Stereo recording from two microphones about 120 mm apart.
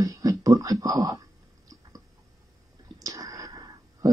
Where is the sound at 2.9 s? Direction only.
30° right (ahead or behind).